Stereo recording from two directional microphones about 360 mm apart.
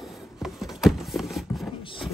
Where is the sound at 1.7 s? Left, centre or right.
Centre.